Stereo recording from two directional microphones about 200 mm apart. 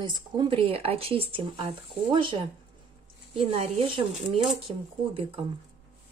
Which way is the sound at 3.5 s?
30° right (ahead or behind).